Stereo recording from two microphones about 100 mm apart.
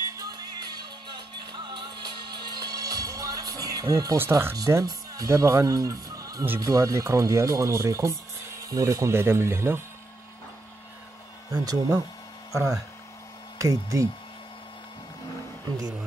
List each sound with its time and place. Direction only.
0.1 s music: 40° right (ahead or behind)
4.2 s speech: 25° right (ahead or behind)
4.8 s speech: 35° right (ahead or behind)
11.5 s speech: 35° right (ahead or behind)